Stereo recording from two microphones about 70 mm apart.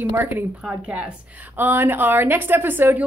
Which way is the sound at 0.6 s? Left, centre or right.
Centre.